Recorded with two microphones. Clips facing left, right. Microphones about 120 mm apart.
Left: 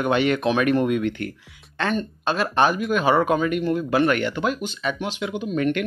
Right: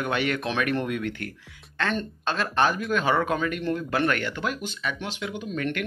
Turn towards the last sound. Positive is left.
turn(degrees=20)  # may be behind; listen again after turning